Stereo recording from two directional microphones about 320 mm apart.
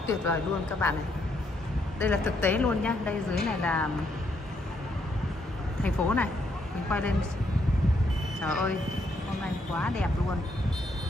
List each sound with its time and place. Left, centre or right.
0.3 s speech: centre
2.0 s a woman's voice: centre
5.8 s a woman's voice: centre
8.4 s a woman's voice: centre
9.8 s a woman's voice: centre